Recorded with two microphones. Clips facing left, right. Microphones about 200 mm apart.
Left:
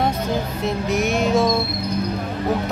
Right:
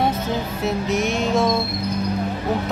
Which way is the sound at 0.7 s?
Centre (ahead or behind).